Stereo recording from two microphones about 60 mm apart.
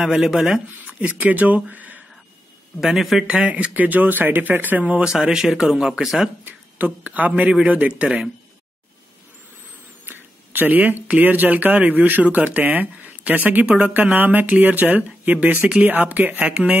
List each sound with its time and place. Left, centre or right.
0.0 s speech: centre
0.9 s speech: right
2.8 s speech: centre
3.3 s speech: right
5.0 s speech: centre
6.4 s speech: right
10.0 s speech: right; by 14.1 s centre
14.1 s speech: right